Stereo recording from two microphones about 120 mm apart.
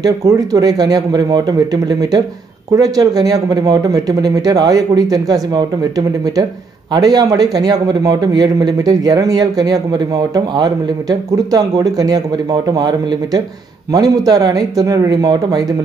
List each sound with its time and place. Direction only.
0.0 s a man's voice: 30° right (ahead or behind)